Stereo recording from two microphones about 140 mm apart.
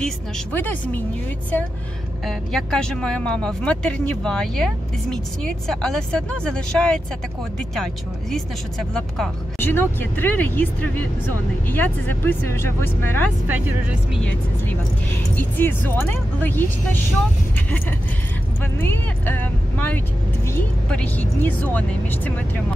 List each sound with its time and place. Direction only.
0.0 s speech: 10° left (ahead or behind)
2.2 s speech: 5° left (ahead or behind)
9.6 s speech: 15° left (ahead or behind)
13.5 s speech: 10° right (ahead or behind)
15.3 s speech: 15° left (ahead or behind)
18.6 s speech: 15° left (ahead or behind)